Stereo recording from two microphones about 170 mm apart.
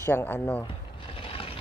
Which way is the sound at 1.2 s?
35° left (ahead or behind).